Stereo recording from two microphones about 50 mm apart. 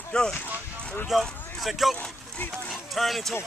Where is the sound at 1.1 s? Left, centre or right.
Centre.